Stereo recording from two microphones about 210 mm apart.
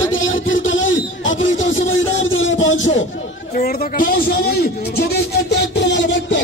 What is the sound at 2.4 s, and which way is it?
Speech, 65° left (ahead or behind).